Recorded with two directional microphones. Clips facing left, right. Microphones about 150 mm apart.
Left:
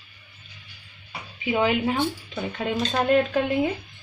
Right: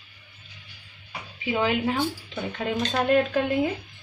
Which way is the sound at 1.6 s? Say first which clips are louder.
Left 2 dB; 5° left (ahead or behind).